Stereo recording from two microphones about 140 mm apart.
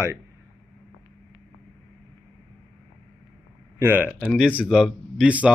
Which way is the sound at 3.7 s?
10° right (ahead or behind).